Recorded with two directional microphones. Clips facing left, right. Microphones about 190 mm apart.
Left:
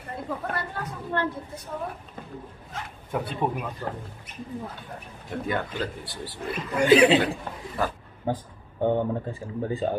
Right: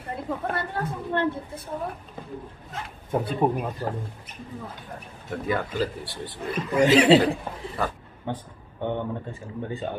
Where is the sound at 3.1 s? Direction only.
40° right (ahead or behind).